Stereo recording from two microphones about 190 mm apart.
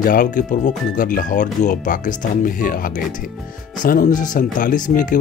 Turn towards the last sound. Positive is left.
turn(degrees=45)  # may be behind; listen again after turning